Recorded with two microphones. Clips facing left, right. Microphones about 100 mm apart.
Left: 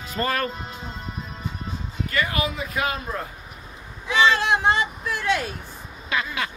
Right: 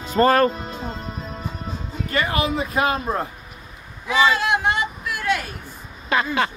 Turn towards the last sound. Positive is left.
turn(degrees=-40)  # may be behind; listen again after turning